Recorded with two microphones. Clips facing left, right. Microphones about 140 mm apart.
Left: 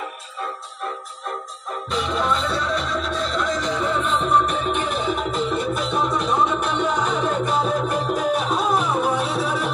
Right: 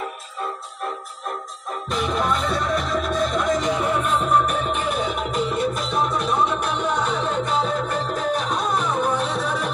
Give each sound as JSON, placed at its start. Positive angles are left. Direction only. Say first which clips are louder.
{"t": 1.9, "sound": "music", "louder": "even", "side_deg": -50}
{"t": 3.7, "sound": "music", "louder": "right 1 dB", "side_deg": -10}
{"t": 6.9, "sound": "music", "louder": "left 1 dB", "side_deg": 5}